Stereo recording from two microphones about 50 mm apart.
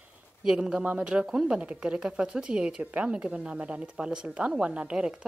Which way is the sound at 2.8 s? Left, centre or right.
Right.